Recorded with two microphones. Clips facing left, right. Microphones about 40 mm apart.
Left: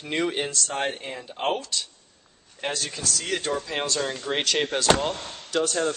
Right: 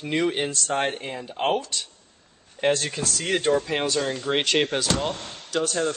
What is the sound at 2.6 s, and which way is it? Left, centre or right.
Speech, right.